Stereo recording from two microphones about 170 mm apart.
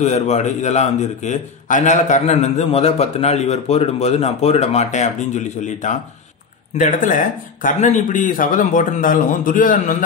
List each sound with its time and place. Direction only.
0.0 s a man's voice: 40° left (ahead or behind)